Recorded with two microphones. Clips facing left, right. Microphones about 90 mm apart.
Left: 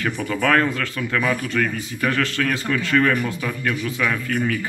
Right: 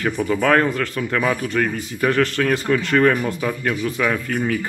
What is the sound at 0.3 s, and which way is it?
Speech, 30° right (ahead or behind).